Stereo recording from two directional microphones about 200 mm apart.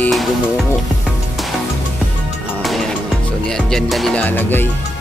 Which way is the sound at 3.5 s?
Centre (ahead or behind).